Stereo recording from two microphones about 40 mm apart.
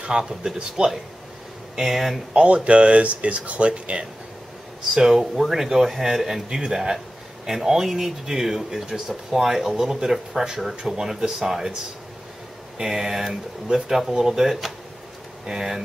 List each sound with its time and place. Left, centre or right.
0.0 s speech: centre
1.8 s speech: centre
2.3 s speech: right
4.9 s speech: centre
12.7 s speech: centre